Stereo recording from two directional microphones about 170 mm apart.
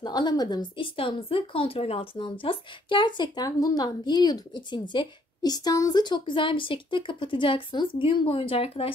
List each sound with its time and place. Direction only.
0.0 s speech: 25° left (ahead or behind)